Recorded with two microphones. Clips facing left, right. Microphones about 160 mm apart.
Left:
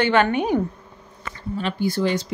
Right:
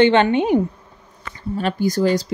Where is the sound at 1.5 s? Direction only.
45° right (ahead or behind).